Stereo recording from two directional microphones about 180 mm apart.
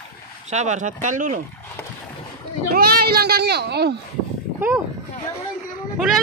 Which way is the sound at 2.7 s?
55° right (ahead or behind).